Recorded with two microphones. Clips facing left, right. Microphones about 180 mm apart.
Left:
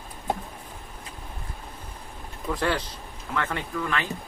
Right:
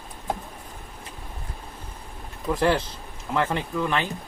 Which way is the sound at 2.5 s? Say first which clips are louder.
Right 5 dB; 25° right (ahead or behind).